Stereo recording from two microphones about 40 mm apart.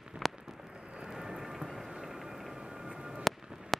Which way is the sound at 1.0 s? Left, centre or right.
Centre.